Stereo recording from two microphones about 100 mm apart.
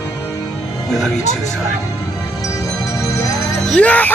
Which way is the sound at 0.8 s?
5° left (ahead or behind).